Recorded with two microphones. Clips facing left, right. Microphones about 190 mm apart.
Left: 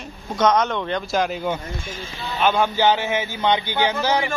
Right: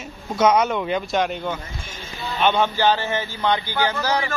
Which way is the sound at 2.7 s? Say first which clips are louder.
Left 1 dB; 15° left (ahead or behind).